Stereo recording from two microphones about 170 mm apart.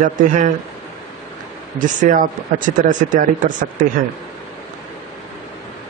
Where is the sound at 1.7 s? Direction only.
50° right (ahead or behind).